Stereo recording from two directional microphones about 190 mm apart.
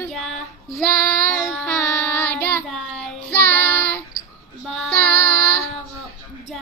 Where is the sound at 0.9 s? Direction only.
5° left (ahead or behind).